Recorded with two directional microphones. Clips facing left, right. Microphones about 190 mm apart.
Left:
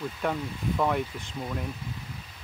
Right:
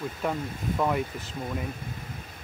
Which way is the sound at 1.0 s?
45° right (ahead or behind).